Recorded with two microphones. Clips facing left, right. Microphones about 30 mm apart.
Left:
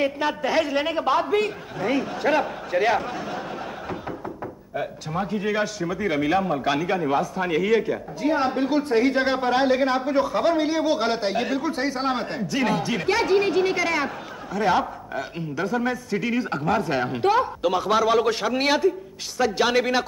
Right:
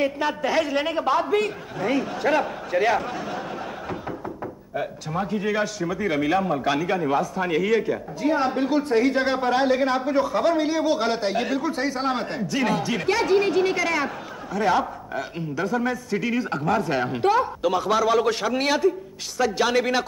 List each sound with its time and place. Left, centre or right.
0.0 s speech: centre
4.7 s speech: centre